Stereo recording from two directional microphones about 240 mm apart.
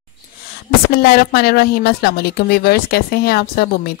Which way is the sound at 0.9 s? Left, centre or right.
Left.